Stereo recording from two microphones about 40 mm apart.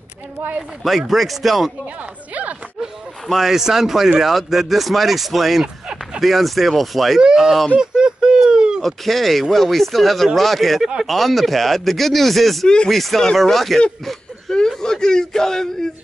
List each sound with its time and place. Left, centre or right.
0.8 s speech: centre
2.0 s speech: right
3.3 s speech: centre
7.2 s speech: centre
7.8 s a sound: centre
8.8 s speech: centre
12.6 s speech: left
12.9 s speech: centre
14.8 s a man's voice: centre